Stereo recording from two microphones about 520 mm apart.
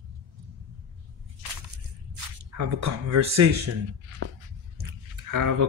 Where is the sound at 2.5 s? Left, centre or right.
Right.